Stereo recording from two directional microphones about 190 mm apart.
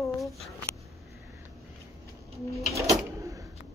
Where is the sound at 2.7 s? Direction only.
15° right (ahead or behind).